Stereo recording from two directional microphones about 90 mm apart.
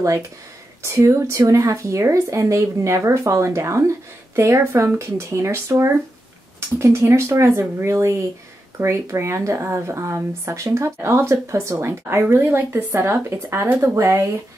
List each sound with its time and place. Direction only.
0.8 s speech: 30° right (ahead or behind)